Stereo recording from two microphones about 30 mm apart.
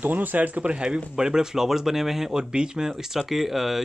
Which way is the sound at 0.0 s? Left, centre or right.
Right.